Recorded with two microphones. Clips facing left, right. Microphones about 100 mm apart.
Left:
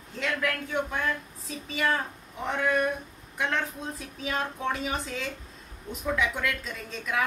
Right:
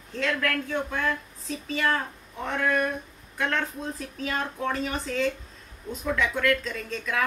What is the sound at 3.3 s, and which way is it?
Speech, 15° left (ahead or behind).